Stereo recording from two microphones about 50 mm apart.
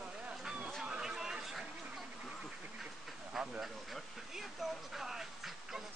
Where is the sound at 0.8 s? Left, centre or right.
Centre.